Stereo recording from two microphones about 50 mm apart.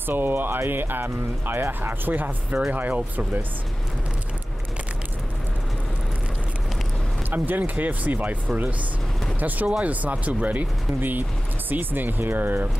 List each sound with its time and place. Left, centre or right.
0.0 s speech: right
7.2 s speech: right